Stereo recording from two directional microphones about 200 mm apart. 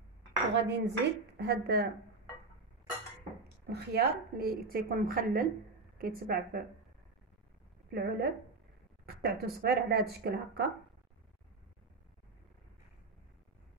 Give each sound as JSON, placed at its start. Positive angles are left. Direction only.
{"t": 0.6, "sound": "speech", "side_deg": -60}
{"t": 3.6, "sound": "a woman's voice", "side_deg": -55}
{"t": 7.9, "sound": "a woman's voice", "side_deg": -55}